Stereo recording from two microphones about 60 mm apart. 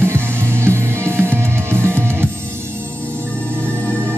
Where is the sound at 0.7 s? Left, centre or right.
Right.